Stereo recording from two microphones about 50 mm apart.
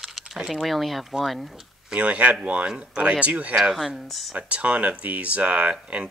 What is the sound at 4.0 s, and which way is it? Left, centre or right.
Speech, centre.